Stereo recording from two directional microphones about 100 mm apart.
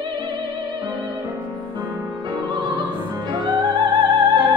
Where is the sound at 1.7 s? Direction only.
45° right (ahead or behind).